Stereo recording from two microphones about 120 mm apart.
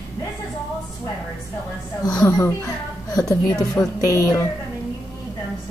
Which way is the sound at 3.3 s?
30° left (ahead or behind).